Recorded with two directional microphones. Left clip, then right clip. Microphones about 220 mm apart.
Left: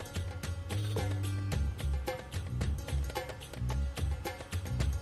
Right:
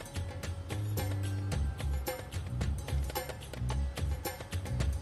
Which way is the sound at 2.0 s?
Centre (ahead or behind).